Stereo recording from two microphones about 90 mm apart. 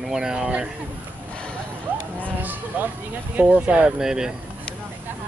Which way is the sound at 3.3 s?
15° right (ahead or behind).